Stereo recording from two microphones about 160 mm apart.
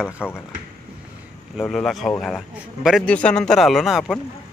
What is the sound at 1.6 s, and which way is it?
A man's voice, centre (ahead or behind).